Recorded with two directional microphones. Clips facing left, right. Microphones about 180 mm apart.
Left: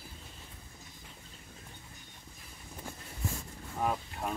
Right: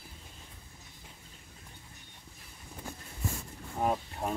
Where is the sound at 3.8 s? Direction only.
25° right (ahead or behind).